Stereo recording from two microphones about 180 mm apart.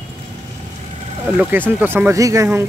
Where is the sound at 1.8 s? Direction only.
10° right (ahead or behind).